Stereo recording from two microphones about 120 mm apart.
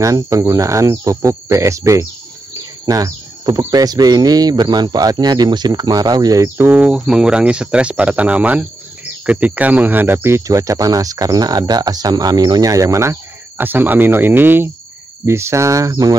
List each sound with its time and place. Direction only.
0.0 s speech: 25° right (ahead or behind)
6.7 s speech: 10° right (ahead or behind); by 16.2 s 30° right (ahead or behind)